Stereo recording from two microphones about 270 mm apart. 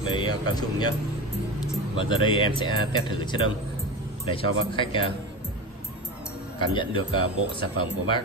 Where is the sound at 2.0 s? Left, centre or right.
Centre.